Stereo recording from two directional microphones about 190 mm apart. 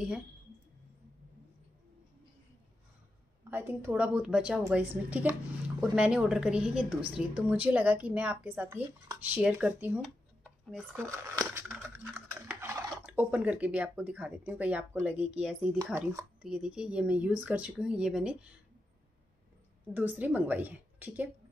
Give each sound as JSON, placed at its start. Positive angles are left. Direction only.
{"t": 3.4, "sound": "a woman's voice", "side_deg": -10}
{"t": 10.0, "sound": "a sound", "side_deg": 0}
{"t": 11.5, "sound": "speech", "side_deg": -10}
{"t": 15.8, "sound": "a woman's voice", "side_deg": -15}
{"t": 16.4, "sound": "speech", "side_deg": -5}
{"t": 19.9, "sound": "a woman's voice", "side_deg": -10}